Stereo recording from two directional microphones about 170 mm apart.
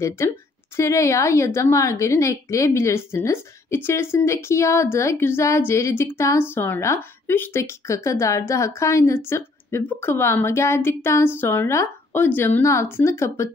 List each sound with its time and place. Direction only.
0.7 s a woman's voice: 15° left (ahead or behind)